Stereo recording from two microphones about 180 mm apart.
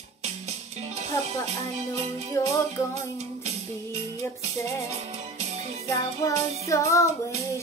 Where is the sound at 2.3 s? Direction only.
15° left (ahead or behind).